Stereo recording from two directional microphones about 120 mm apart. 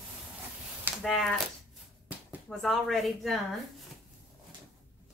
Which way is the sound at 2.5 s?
5° left (ahead or behind).